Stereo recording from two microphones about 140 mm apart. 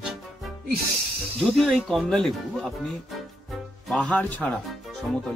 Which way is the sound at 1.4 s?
Centre (ahead or behind).